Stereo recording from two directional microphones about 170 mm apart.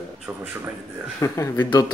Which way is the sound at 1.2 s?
20° left (ahead or behind).